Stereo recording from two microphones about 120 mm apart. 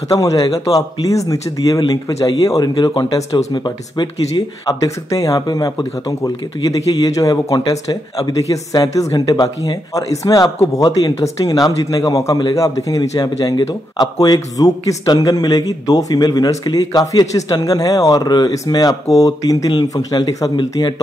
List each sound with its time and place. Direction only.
0.1 s speech: 30° left (ahead or behind)